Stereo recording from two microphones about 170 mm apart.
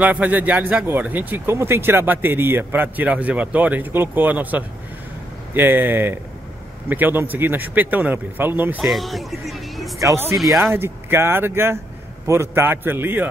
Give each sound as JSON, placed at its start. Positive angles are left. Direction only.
{"t": 0.0, "sound": "speech", "side_deg": -10}
{"t": 9.9, "sound": "speech", "side_deg": -15}
{"t": 10.3, "sound": "speech", "side_deg": 0}
{"t": 10.6, "sound": "speech", "side_deg": -15}